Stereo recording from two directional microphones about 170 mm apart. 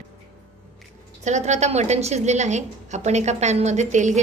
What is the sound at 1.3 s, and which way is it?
A woman's voice, 45° right (ahead or behind).